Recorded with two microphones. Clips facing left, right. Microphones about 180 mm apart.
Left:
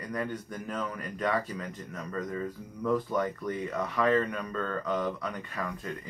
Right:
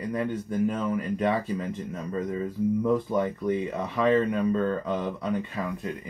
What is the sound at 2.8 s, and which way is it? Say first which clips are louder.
Speech: left 1 dB; 25° right (ahead or behind).